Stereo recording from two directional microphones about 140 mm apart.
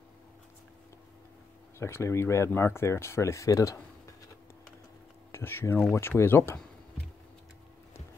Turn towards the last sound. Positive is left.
turn(degrees=15)  # may be behind; listen again after turning